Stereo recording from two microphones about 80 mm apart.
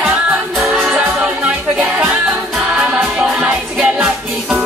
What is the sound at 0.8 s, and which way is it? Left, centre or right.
Music, centre.